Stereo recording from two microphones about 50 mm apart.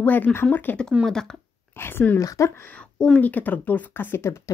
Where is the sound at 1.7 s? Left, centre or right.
Left.